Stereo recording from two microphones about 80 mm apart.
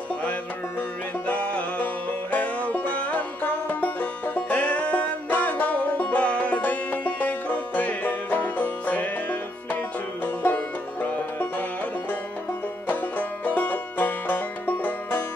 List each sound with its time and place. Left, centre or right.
1.2 s music: centre
12.8 s music: left